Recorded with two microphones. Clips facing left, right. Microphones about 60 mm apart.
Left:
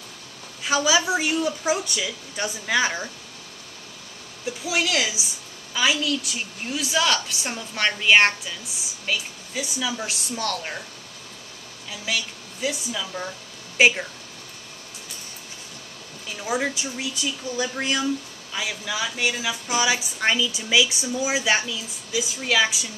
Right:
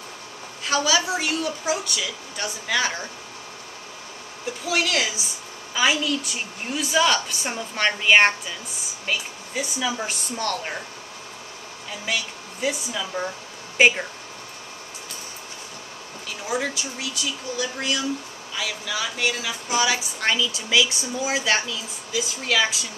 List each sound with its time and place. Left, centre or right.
0.7 s a woman's voice: centre
4.6 s a woman's voice: centre
5.8 s a woman's voice: centre
10.5 s speech: centre
12.1 s a woman's voice: centre
13.7 s speech: centre
16.4 s a woman's voice: centre
17.2 s a woman's voice: left